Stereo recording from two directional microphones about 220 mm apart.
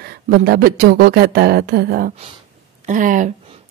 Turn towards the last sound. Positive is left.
turn(degrees=-35)  # may be behind; listen again after turning